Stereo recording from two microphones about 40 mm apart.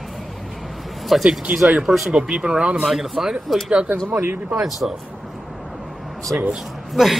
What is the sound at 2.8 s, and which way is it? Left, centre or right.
Speech, centre.